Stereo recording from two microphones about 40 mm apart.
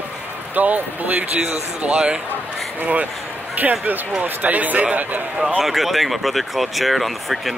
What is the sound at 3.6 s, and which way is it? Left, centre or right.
A man's voice, right.